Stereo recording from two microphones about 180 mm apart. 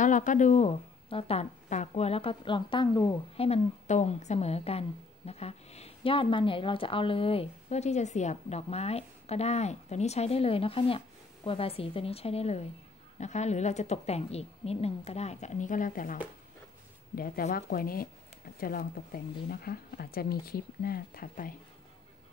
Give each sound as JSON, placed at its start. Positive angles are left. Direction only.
{"t": 0.0, "sound": "a woman's voice", "side_deg": 45}
{"t": 3.4, "sound": "a woman's voice", "side_deg": 35}